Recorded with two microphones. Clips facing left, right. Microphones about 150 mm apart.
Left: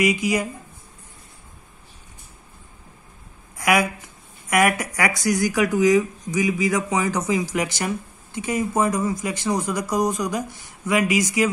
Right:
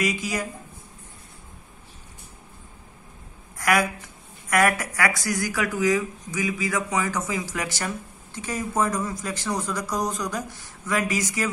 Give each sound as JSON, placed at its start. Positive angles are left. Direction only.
{"t": 0.0, "sound": "speech", "side_deg": 15}
{"t": 3.5, "sound": "speech", "side_deg": 10}